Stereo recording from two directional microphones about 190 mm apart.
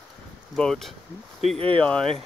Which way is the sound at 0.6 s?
Centre (ahead or behind).